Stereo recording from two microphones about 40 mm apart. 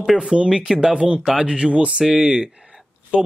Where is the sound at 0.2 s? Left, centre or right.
Right.